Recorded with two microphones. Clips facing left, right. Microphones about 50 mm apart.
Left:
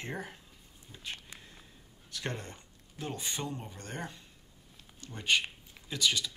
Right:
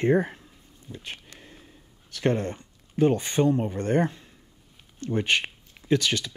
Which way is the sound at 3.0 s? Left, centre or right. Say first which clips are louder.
Right 16 dB; right.